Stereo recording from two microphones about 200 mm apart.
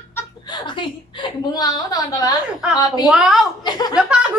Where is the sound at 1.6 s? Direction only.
20° left (ahead or behind).